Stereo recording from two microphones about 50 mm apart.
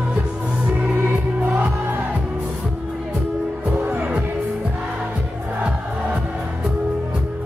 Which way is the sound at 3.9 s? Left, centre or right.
Right.